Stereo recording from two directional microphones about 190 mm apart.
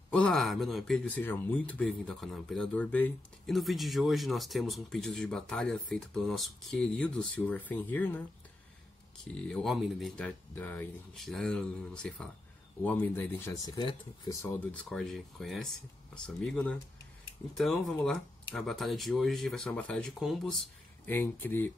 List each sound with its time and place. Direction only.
0.1 s speech: 5° left (ahead or behind)
9.4 s speech: 5° left (ahead or behind)
13.7 s speech: 25° left (ahead or behind)
14.4 s speech: 5° left (ahead or behind)